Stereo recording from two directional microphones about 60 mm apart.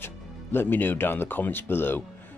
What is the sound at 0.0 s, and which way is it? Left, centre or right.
Speech, left.